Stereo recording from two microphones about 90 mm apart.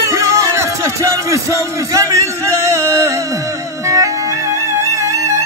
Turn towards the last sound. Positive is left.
turn(degrees=-35)  # may be behind; listen again after turning